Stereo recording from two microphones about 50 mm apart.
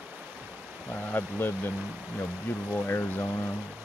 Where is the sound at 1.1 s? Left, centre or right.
Left.